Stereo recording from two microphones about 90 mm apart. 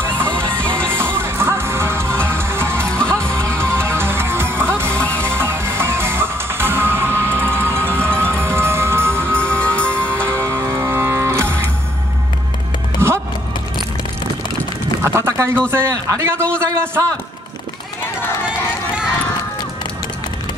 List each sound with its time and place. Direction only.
0.0 s music: 25° right (ahead or behind)
0.5 s music: 10° left (ahead or behind)
0.9 s music: 25° right (ahead or behind)
2.9 s music: 10° left (ahead or behind)
3.3 s music: 30° right (ahead or behind)
4.9 s music: 15° left (ahead or behind)
5.2 s music: 30° right (ahead or behind)
9.3 s music: 15° left (ahead or behind)
10.2 s music: 30° right (ahead or behind)
13.0 s music: 30° right (ahead or behind)
15.1 s a sound: 30° right (ahead or behind)
15.7 s a man's voice: 30° right (ahead or behind)